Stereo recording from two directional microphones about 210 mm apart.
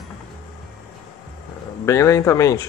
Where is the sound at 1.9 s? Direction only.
15° left (ahead or behind).